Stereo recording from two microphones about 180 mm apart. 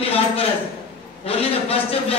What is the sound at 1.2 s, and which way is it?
Speech, 30° left (ahead or behind).